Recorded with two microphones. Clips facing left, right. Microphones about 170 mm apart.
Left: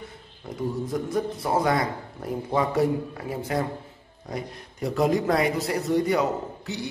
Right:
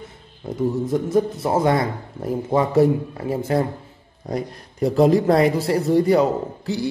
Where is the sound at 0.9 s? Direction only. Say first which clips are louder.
Right 8 dB; 25° right (ahead or behind).